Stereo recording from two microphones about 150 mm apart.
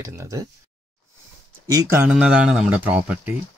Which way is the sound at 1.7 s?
20° right (ahead or behind).